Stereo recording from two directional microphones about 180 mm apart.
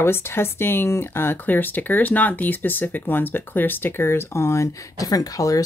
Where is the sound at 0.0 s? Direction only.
15° left (ahead or behind).